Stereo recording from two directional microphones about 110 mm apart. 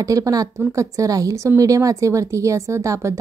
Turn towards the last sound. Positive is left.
turn(degrees=-25)  # may be behind; listen again after turning